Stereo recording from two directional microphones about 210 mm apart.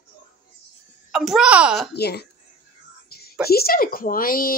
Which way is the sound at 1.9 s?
50° left (ahead or behind).